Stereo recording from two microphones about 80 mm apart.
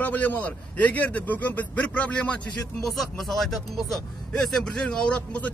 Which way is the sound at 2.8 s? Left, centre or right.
Centre.